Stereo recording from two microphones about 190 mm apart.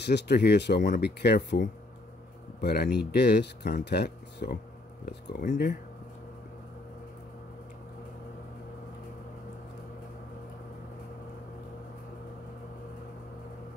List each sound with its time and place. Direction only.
0.0 s speech: 60° left (ahead or behind)